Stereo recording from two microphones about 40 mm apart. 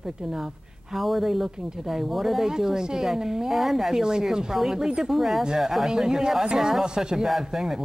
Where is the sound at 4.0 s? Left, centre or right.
Centre.